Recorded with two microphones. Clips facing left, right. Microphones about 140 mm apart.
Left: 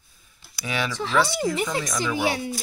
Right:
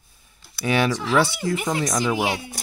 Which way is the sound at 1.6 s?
40° right (ahead or behind).